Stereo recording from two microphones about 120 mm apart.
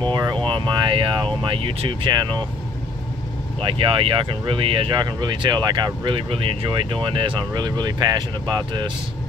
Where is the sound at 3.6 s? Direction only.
45° right (ahead or behind).